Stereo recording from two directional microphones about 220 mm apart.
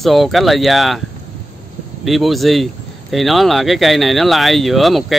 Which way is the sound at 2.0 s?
Centre (ahead or behind).